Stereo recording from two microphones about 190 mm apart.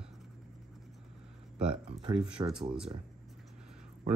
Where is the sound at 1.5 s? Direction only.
5° right (ahead or behind).